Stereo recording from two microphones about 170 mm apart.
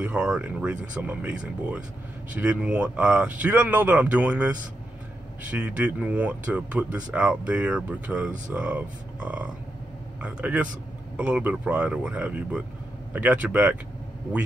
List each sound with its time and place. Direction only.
0.0 s speech: 5° right (ahead or behind)